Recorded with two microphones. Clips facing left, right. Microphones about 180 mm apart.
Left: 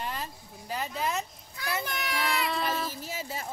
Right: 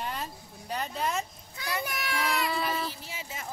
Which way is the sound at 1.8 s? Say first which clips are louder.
Even; 5° right (ahead or behind).